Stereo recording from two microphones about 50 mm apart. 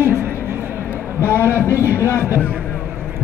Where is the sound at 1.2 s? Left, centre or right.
Left.